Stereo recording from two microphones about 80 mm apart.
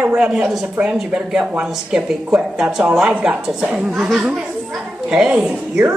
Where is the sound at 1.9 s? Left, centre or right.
Centre.